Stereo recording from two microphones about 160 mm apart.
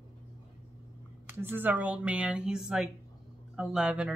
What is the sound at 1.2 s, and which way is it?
A woman's voice, 10° right (ahead or behind).